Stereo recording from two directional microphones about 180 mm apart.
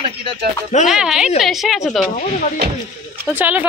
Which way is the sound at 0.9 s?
5° right (ahead or behind).